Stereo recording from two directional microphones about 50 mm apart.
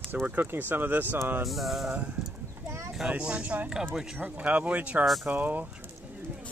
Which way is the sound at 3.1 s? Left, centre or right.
Right.